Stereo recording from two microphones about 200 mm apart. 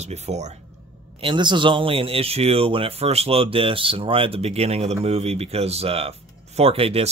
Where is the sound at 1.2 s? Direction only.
25° right (ahead or behind).